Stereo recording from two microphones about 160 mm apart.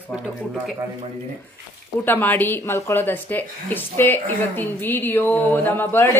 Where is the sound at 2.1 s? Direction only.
10° left (ahead or behind).